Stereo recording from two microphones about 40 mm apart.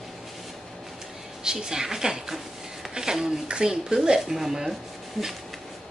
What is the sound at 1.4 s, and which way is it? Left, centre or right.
Speech, centre.